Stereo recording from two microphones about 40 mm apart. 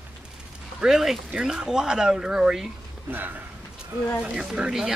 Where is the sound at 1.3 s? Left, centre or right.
Centre.